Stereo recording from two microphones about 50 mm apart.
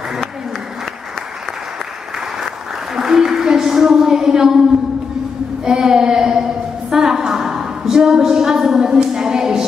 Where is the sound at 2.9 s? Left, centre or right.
Centre.